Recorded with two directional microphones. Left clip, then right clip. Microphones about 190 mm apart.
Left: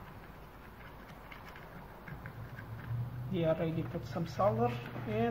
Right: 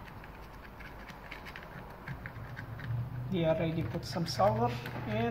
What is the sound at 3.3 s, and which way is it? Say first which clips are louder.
Speech: right 2 dB; 5° left (ahead or behind).